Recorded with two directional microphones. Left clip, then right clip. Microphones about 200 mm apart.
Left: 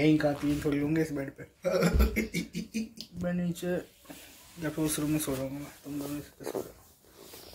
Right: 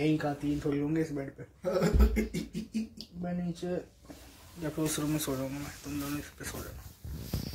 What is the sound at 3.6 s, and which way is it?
Speech, 15° left (ahead or behind).